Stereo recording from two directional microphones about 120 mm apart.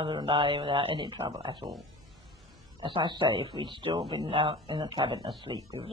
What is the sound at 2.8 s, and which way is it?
Speech, 40° right (ahead or behind).